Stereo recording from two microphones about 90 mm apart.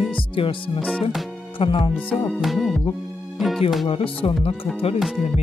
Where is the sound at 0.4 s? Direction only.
75° left (ahead or behind).